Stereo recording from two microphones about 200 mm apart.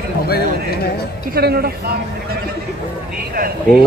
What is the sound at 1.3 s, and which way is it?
Speech, 50° right (ahead or behind).